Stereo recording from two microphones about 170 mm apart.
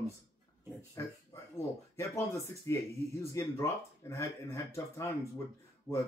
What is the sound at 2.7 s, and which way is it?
Speech, 15° left (ahead or behind).